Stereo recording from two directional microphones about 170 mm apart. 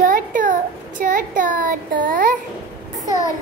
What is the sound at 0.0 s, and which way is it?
Child singing, 50° right (ahead or behind).